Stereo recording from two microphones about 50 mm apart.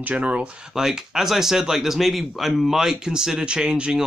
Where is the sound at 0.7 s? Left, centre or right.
Centre.